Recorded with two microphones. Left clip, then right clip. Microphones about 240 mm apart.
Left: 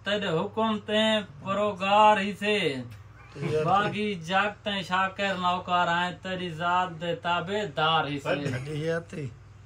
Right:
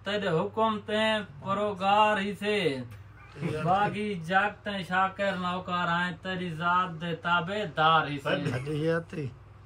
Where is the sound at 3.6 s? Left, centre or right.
Centre; by 8.5 s left.